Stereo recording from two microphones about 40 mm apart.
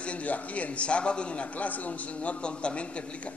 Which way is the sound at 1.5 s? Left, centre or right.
Left.